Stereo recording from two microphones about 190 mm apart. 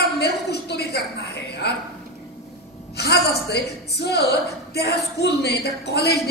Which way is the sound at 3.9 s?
60° left (ahead or behind).